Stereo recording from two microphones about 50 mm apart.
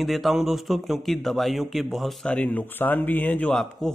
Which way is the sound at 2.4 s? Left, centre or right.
Left.